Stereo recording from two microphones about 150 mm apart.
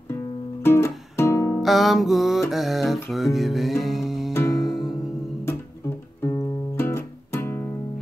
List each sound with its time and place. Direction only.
0.1 s music: 15° left (ahead or behind)
1.6 s music: centre (ahead or behind)
4.3 s music: 15° left (ahead or behind)
4.6 s music: centre (ahead or behind)
6.2 s music: 20° left (ahead or behind)